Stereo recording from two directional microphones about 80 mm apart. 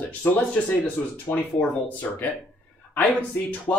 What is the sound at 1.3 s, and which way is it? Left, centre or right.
Speech, left.